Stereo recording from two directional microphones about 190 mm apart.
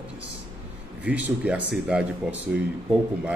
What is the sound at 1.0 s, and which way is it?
Speech, 10° right (ahead or behind).